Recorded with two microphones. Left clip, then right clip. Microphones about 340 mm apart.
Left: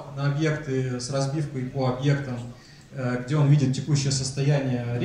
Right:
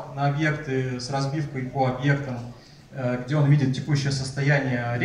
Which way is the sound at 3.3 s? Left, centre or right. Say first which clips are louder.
Left 1 dB; right.